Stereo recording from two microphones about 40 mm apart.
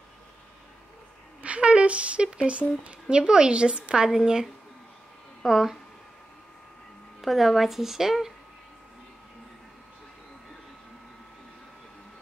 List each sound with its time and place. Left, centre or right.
1.4 s a sound: right
2.3 s a woman's voice: right; by 5.8 s centre
7.2 s a woman's voice: centre